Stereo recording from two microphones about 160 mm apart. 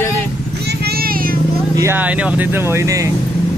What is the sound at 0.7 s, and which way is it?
Vehicle, 75° right (ahead or behind).